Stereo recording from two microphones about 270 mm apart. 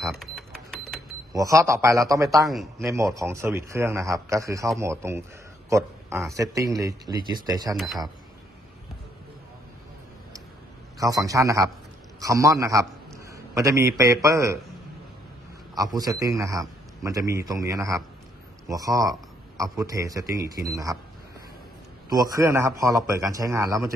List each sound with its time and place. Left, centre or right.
0.1 s cash register: centre
1.3 s a man's voice: centre
2.3 s a man's voice: centre
3.2 s a man's voice: centre
7.7 s a man's voice: centre
11.0 s a man's voice: centre
15.7 s a man's voice: centre
22.1 s a man's voice: centre